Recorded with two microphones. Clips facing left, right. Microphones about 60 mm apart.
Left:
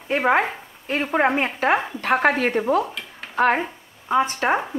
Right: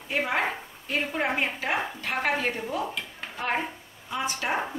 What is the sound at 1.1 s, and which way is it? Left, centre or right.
A woman's voice, left.